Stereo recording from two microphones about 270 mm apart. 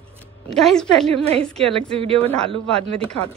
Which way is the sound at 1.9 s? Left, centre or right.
Right.